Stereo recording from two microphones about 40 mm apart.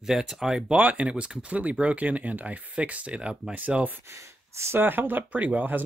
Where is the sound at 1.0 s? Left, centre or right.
Right.